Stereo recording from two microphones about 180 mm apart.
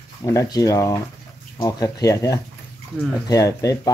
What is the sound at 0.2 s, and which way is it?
Speech, 20° left (ahead or behind).